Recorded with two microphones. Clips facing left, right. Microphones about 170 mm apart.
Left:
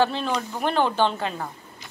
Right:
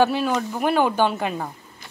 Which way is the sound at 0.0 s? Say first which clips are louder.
Right 3 dB; 10° right (ahead or behind).